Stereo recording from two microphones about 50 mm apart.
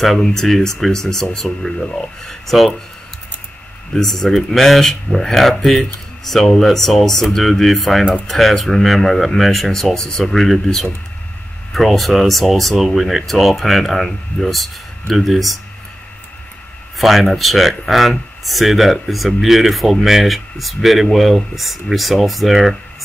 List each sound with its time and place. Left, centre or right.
0.0 s speech: centre
3.9 s speech: centre
17.0 s speech: centre